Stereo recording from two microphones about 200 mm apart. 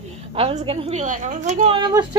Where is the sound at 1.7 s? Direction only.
20° right (ahead or behind).